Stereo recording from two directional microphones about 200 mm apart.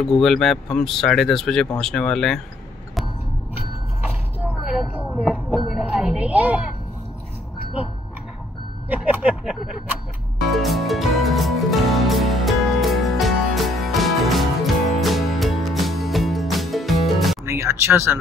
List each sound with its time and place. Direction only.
0.0 s speech: centre (ahead or behind)
4.6 s a sound: 5° right (ahead or behind)
8.8 s speech: 10° right (ahead or behind)
10.5 s music: centre (ahead or behind)
17.5 s speech: 15° right (ahead or behind)